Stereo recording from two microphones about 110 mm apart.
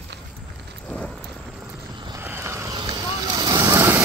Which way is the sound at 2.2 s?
20° right (ahead or behind).